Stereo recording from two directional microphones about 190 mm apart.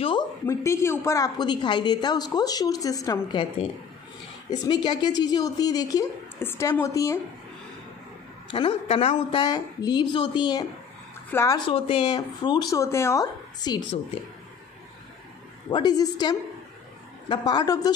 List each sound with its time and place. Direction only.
0.5 s a woman's voice: 15° left (ahead or behind)
4.5 s a woman's voice: 25° left (ahead or behind)
8.5 s a woman's voice: 25° left (ahead or behind)
9.4 s a woman's voice: 20° left (ahead or behind)
15.7 s a woman's voice: 20° left (ahead or behind)